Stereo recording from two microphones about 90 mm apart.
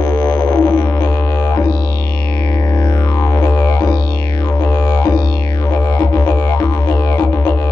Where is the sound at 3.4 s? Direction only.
45° left (ahead or behind).